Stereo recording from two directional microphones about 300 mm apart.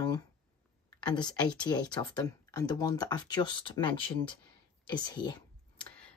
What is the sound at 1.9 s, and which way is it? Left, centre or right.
Speech, centre.